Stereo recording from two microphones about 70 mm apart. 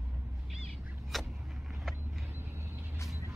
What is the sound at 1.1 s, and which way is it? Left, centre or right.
Vehicle, centre.